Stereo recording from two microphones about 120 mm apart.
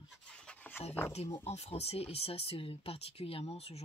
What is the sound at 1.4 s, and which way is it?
Speech, 65° left (ahead or behind).